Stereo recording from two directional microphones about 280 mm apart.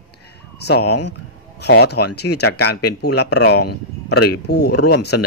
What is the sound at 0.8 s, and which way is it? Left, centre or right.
Speech, left.